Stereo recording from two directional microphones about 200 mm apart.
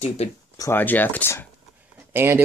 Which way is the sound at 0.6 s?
10° left (ahead or behind).